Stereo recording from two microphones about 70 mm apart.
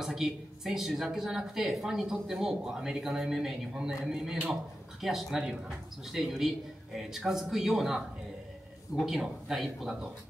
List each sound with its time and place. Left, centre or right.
0.0 s speech: centre
9.0 s speech: centre